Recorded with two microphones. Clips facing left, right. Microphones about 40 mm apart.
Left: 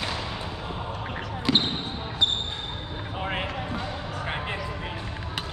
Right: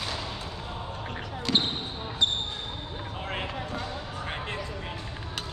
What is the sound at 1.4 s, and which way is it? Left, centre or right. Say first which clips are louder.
Basketball bounce: left 3 dB; centre.